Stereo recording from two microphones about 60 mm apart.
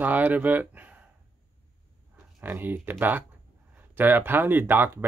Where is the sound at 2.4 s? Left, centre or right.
Right.